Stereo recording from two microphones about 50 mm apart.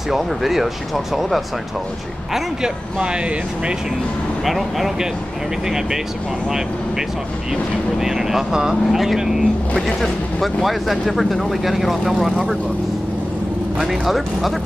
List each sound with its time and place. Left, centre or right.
0.1 s speech: centre
2.3 s speech: centre
4.5 s speech: centre
8.0 s speech: centre
13.7 s speech: centre